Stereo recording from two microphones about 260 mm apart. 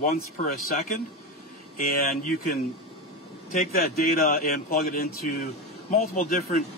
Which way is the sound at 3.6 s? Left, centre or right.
Left.